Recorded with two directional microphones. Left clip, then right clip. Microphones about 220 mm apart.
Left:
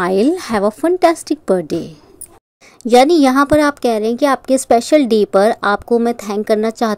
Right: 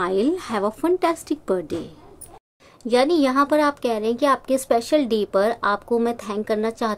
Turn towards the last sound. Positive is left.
turn(degrees=25)  # may be behind; listen again after turning